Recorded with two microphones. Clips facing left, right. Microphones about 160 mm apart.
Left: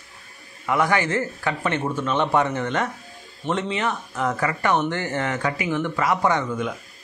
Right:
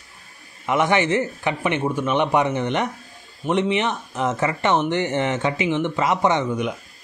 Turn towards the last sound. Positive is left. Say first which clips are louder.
# right 2 dB
turn(degrees=-20)  # may be behind; listen again after turning